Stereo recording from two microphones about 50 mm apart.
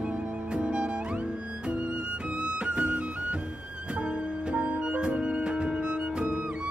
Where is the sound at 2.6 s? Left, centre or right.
Right.